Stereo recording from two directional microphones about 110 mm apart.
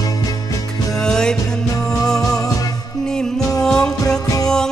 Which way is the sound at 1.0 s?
5° left (ahead or behind).